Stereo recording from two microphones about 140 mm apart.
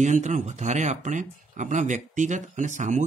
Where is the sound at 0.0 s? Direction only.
60° right (ahead or behind).